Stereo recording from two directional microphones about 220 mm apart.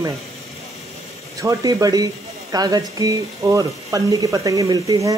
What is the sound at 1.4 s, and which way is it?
Speech, 15° right (ahead or behind).